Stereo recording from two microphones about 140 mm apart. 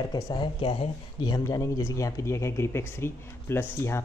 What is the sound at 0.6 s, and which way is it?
Speech, 40° left (ahead or behind).